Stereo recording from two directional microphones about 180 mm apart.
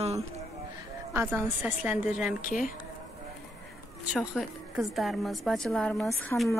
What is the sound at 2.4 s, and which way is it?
Speech, 50° left (ahead or behind).